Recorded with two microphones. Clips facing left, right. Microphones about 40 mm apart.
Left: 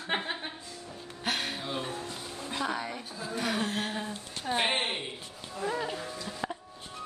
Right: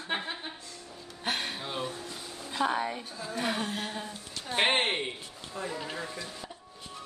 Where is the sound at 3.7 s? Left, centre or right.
Left.